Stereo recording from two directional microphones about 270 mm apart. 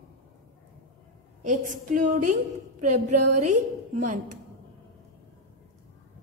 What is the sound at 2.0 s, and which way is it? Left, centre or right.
A woman's voice, right.